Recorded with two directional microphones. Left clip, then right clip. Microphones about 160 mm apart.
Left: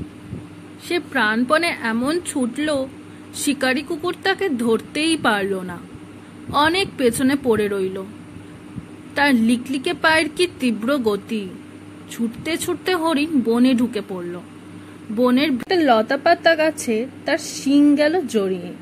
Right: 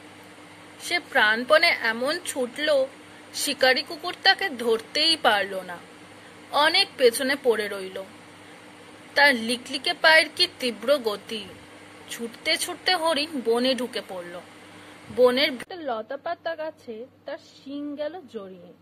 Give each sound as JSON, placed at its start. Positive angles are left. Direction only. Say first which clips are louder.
{"t": 0.8, "sound": "speech", "louder": "left 1 dB", "side_deg": 0}
{"t": 9.1, "sound": "speech", "louder": "left 1 dB", "side_deg": 5}